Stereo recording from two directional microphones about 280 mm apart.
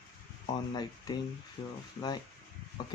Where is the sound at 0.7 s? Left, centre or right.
Centre.